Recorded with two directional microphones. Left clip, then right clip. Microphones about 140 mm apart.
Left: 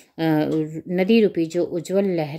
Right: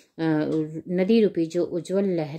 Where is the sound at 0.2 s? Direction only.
20° left (ahead or behind).